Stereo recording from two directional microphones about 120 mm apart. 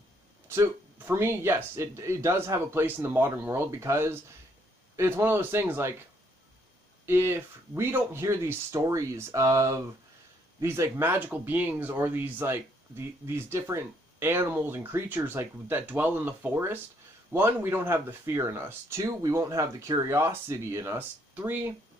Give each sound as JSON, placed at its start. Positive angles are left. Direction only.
{"t": 0.5, "sound": "speech", "side_deg": -20}
{"t": 7.1, "sound": "speech", "side_deg": -20}